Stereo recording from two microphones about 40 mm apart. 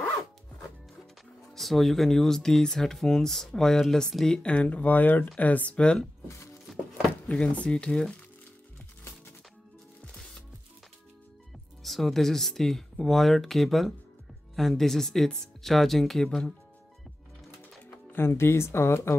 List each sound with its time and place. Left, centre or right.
1.5 s speech: centre
4.3 s speech: left
4.6 s speech: left
5.7 s speech: left
7.2 s speech: left
11.8 s speech: centre
17.8 s speech: left